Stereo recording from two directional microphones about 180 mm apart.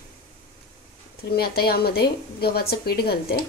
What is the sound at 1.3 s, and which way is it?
Speech, 60° left (ahead or behind).